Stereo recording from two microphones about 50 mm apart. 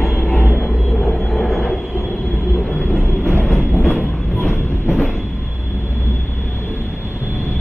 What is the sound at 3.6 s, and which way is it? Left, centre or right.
Train, left.